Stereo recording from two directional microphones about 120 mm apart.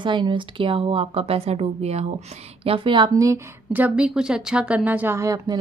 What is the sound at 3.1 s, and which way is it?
Speech, 30° right (ahead or behind).